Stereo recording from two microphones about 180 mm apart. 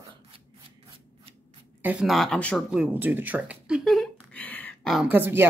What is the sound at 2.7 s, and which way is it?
Speech, 10° right (ahead or behind).